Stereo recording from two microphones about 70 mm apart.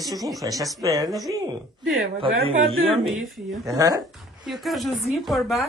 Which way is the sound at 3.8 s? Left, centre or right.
Right.